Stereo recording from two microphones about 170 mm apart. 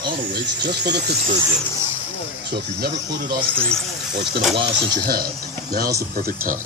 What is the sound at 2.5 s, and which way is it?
Speech, 65° right (ahead or behind).